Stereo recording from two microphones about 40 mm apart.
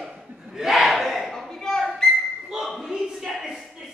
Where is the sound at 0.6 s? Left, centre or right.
Centre.